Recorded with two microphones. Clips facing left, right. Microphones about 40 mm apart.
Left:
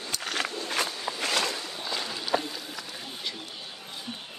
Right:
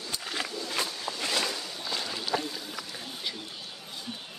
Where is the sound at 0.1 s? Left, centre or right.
Left.